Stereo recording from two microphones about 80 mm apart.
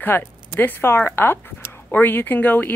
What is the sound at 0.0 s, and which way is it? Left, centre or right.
Speech, left.